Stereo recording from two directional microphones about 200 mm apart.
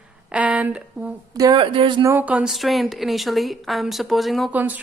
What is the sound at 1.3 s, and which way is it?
Speech, 20° right (ahead or behind).